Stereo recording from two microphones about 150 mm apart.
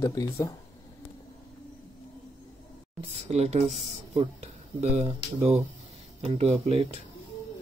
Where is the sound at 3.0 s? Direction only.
45° right (ahead or behind).